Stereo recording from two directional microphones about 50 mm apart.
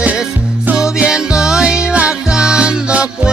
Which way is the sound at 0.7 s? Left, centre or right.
Centre.